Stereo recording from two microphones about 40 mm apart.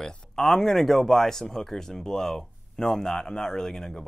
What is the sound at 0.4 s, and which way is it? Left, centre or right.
Speech, centre.